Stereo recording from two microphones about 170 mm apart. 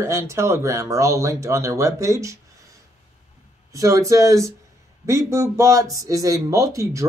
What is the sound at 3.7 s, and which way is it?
Speech, 20° right (ahead or behind).